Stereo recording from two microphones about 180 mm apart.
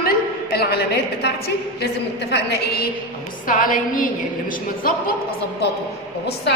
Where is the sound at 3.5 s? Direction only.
50° left (ahead or behind).